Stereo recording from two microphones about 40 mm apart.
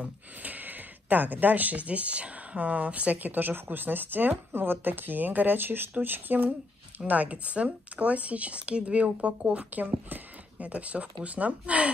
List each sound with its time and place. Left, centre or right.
0.4 s speech: right
4.5 s speech: right
7.1 s speech: right
10.6 s speech: right